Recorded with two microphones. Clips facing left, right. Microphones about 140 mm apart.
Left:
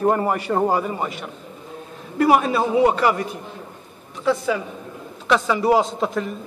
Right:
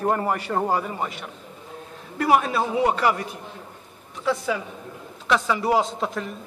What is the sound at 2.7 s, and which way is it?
Speech, 5° left (ahead or behind).